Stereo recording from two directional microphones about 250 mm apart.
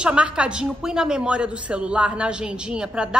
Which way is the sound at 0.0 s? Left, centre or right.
Centre.